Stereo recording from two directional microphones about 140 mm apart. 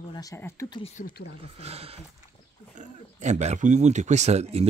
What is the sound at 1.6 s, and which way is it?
Speech, 45° right (ahead or behind).